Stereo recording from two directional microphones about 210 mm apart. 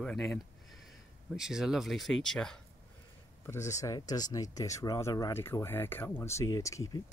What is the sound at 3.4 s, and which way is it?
Speech, 15° left (ahead or behind).